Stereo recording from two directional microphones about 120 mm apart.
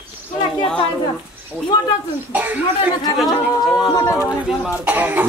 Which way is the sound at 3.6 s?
Centre (ahead or behind).